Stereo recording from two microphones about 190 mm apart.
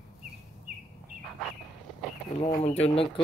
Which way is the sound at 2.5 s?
35° left (ahead or behind).